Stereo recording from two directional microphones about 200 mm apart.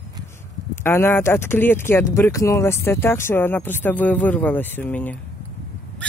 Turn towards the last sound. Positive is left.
turn(degrees=10)  # may be behind; listen again after turning